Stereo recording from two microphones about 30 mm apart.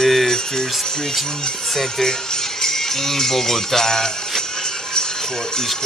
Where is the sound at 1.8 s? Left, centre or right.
Centre.